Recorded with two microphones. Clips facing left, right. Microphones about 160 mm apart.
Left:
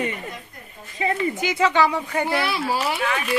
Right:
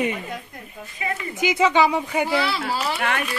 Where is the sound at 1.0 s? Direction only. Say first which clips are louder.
Left 5 dB; 30° left (ahead or behind).